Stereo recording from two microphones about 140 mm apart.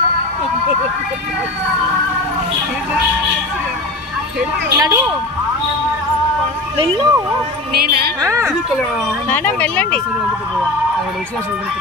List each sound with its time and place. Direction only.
4.7 s a woman's voice: 20° right (ahead or behind)
6.8 s speech: 35° right (ahead or behind)
7.8 s a woman's voice: 90° right
8.2 s a woman's voice: 25° right (ahead or behind)
9.3 s speech: 10° left (ahead or behind)